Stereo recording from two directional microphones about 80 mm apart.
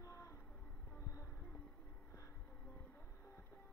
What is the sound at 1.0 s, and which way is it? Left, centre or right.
Music, left.